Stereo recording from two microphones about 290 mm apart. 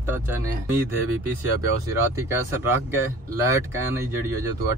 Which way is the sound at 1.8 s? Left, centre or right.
Centre.